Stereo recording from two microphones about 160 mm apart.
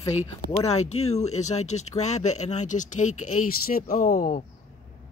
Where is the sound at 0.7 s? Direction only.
40° left (ahead or behind); by 4.5 s 60° left (ahead or behind).